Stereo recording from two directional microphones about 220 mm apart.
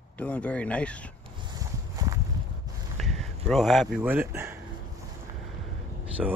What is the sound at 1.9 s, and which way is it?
Walk, 15° right (ahead or behind).